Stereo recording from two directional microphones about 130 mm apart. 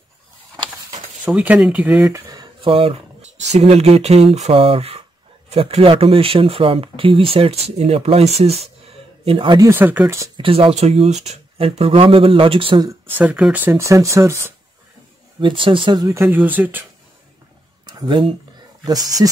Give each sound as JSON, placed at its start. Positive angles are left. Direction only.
{"t": 1.2, "sound": "speech", "side_deg": -10}
{"t": 2.1, "sound": "a sound", "side_deg": -25}
{"t": 2.6, "sound": "speech", "side_deg": -45}
{"t": 9.2, "sound": "speech", "side_deg": -45}
{"t": 9.6, "sound": "speech", "side_deg": -15}
{"t": 10.3, "sound": "speech", "side_deg": -45}
{"t": 13.0, "sound": "speech", "side_deg": -10}
{"t": 15.4, "sound": "speech", "side_deg": -40}
{"t": 16.3, "sound": "speech", "side_deg": -15}
{"t": 17.8, "sound": "a sound", "side_deg": -35}